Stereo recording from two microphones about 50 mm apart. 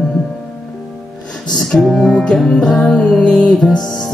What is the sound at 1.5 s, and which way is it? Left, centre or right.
Music, centre.